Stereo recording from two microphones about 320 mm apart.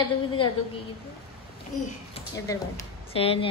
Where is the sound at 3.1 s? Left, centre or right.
Centre.